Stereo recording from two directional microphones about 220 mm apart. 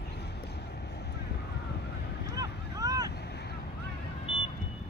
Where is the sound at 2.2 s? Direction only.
50° left (ahead or behind).